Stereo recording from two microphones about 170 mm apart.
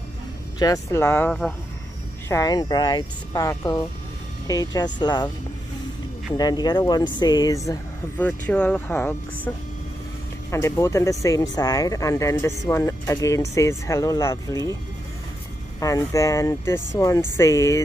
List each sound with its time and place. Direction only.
0.6 s speech: 20° left (ahead or behind)
1.0 s speech: 10° left (ahead or behind)
2.2 s speech: 20° left (ahead or behind)
6.3 s speech: 25° left (ahead or behind)
10.5 s speech: 15° left (ahead or behind)
15.8 s speech: 20° left (ahead or behind)